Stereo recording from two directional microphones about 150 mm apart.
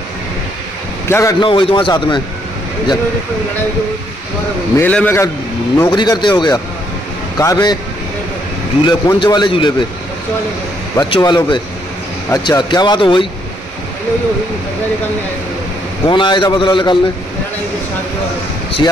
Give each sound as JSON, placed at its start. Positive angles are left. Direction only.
{"t": 1.0, "sound": "a man's voice", "side_deg": 15}
{"t": 1.4, "sound": "a man's voice", "side_deg": 35}
{"t": 4.7, "sound": "a man's voice", "side_deg": 10}
{"t": 5.8, "sound": "speech", "side_deg": 25}
{"t": 8.8, "sound": "a man's voice", "side_deg": 30}
{"t": 11.0, "sound": "speech", "side_deg": 30}
{"t": 16.1, "sound": "a man's voice", "side_deg": 30}